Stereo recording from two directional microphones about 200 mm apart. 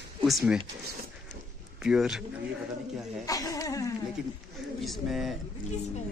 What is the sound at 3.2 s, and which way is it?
Speech, 15° left (ahead or behind).